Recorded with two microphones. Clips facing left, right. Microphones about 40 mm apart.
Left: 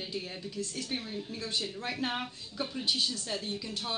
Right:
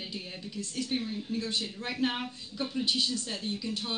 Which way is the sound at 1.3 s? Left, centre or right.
Right.